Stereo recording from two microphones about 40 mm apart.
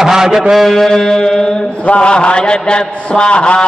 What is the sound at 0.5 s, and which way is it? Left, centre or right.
Mantra, centre.